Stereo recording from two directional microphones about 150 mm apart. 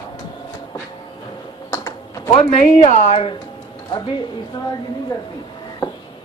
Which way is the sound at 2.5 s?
45° left (ahead or behind).